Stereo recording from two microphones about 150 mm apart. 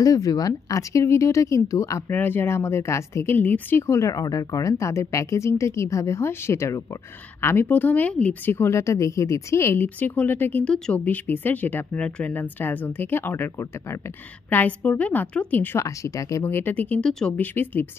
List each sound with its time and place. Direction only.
0.0 s a woman's voice: 25° left (ahead or behind)